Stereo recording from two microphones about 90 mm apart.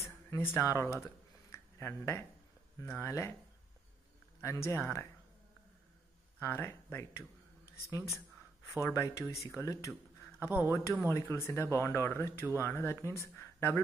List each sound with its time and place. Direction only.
0.0 s a sound: 30° left (ahead or behind)
2.8 s speech: 30° left (ahead or behind)
4.4 s speech: 35° left (ahead or behind)
6.4 s speech: 25° left (ahead or behind)
10.5 s speech: 25° right (ahead or behind)
11.1 s speech: 30° left (ahead or behind)